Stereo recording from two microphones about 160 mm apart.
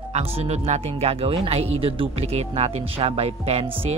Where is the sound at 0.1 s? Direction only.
40° right (ahead or behind).